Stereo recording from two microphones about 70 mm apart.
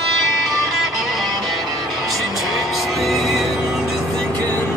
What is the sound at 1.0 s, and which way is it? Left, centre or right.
Music, centre.